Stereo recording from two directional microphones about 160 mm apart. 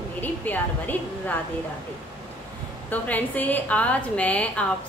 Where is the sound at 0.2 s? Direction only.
10° left (ahead or behind).